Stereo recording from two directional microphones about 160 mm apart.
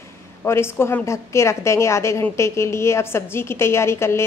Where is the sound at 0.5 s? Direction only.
15° left (ahead or behind).